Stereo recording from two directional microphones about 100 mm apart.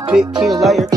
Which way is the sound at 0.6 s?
Centre (ahead or behind).